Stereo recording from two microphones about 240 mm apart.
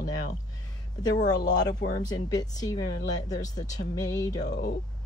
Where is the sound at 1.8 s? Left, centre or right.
Left.